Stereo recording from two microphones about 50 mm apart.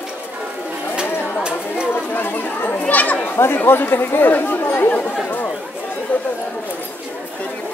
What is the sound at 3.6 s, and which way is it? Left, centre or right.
Speech, left.